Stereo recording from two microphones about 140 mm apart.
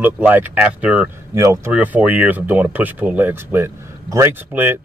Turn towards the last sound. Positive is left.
turn(degrees=-15)  # may be behind; listen again after turning